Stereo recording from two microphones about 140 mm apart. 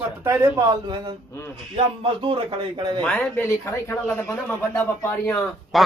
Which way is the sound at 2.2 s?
40° right (ahead or behind).